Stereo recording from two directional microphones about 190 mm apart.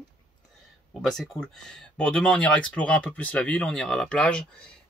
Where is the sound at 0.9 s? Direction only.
Centre (ahead or behind).